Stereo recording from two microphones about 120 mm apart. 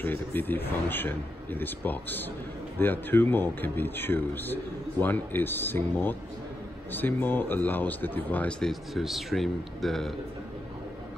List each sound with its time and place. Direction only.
0.0 s speech: 15° left (ahead or behind)